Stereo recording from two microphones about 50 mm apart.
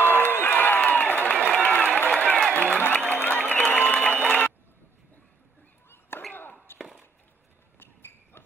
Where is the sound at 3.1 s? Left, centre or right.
Left.